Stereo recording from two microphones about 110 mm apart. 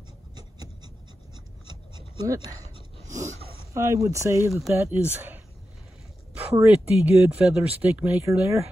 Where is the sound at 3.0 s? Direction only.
30° right (ahead or behind).